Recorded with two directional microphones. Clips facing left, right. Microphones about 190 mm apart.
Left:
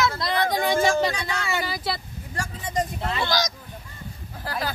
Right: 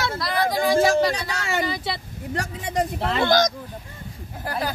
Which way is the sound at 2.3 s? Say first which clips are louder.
Right 3 dB; 65° right (ahead or behind).